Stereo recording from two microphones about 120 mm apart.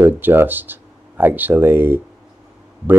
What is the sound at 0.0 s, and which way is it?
Speech, 15° right (ahead or behind).